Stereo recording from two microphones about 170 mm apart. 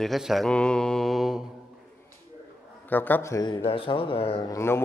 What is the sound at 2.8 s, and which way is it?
Speech, 10° left (ahead or behind).